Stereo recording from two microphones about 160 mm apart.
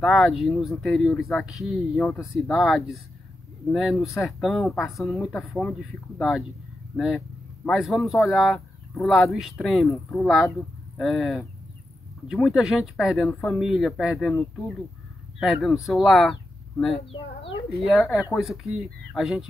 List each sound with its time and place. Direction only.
0.0 s speech: centre (ahead or behind)
7.6 s speech: centre (ahead or behind)
15.3 s speech: centre (ahead or behind)
17.1 s speech: 35° left (ahead or behind)
17.8 s speech: centre (ahead or behind)